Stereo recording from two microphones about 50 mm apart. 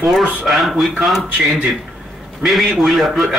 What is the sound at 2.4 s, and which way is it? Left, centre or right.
Speech, centre.